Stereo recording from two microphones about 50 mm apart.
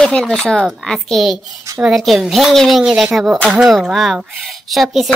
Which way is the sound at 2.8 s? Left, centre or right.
Centre.